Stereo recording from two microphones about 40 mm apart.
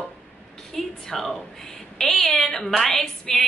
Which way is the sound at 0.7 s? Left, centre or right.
Centre.